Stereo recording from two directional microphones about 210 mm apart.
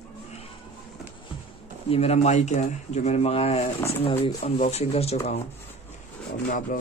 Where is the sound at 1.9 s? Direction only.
30° left (ahead or behind).